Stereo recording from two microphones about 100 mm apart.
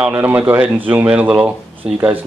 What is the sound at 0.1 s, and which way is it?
Speech, 20° right (ahead or behind).